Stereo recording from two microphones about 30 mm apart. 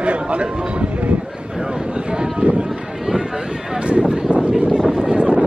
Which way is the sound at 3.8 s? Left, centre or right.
Right.